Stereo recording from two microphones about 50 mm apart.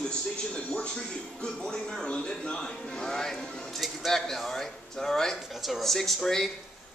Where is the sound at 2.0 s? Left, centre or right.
Left.